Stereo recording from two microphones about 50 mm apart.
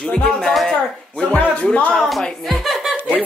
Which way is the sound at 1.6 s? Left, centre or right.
Left.